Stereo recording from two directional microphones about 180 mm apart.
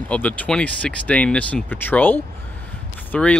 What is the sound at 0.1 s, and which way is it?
Speech, 10° left (ahead or behind).